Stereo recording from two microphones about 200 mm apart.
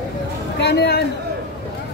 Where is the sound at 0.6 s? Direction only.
55° left (ahead or behind).